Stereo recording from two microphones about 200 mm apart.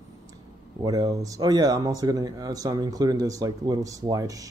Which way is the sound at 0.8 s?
20° right (ahead or behind).